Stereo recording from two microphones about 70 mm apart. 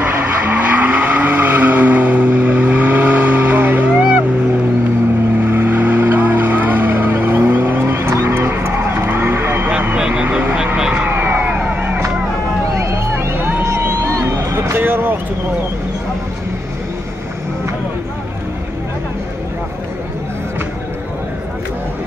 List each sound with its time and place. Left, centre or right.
0.0 s vehicle: right
5.4 s vehicle: right
7.9 s vehicle: right
9.7 s vehicle: right
11.1 s a sound: right
12.7 s a sound: right